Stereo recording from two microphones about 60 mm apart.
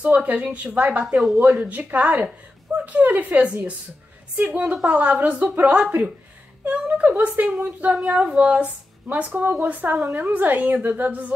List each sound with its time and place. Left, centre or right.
0.0 s speech: right